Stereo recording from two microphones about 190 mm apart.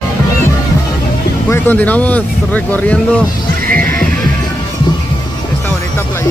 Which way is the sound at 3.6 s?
45° right (ahead or behind).